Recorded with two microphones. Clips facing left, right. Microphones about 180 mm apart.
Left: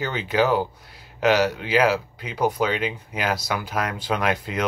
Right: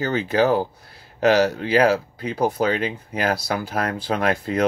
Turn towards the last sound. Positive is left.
turn(degrees=-30)  # may be behind; listen again after turning